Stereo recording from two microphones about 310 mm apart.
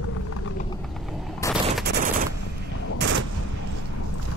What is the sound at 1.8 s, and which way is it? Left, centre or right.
Machine gun, right.